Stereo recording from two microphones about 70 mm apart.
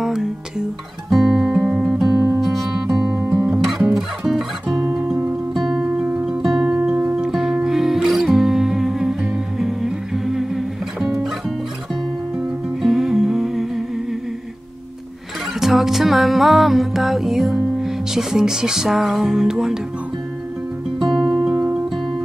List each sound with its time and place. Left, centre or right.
0.0 s music: centre
1.1 s guitar: centre
1.7 s music: centre
5.9 s music: centre
6.2 s music: centre
12.8 s humming: centre
15.6 s music: centre
21.1 s music: centre
21.5 s music: centre